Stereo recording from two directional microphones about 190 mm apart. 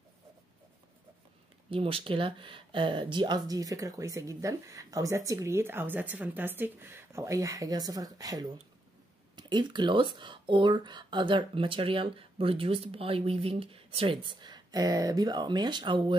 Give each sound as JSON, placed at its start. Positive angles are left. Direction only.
{"t": 1.7, "sound": "speech", "side_deg": -30}